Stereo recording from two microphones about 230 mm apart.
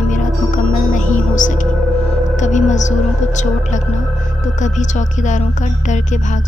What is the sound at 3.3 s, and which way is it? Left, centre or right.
Speech, left.